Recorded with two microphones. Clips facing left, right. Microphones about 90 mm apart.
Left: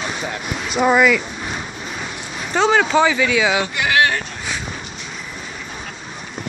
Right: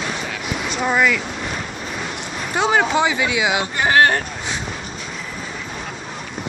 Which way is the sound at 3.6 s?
35° right (ahead or behind).